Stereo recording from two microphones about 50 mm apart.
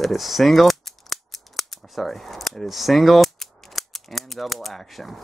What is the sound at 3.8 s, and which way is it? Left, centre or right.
Typewriter, centre.